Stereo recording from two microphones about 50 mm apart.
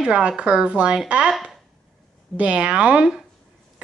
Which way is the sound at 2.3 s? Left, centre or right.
Right.